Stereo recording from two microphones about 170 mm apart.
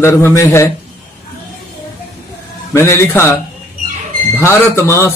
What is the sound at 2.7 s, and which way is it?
Speech, 15° left (ahead or behind).